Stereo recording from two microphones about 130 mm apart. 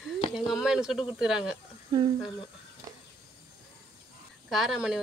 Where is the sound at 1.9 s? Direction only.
35° right (ahead or behind).